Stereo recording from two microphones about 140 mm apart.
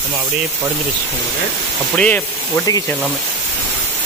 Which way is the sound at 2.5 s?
25° left (ahead or behind).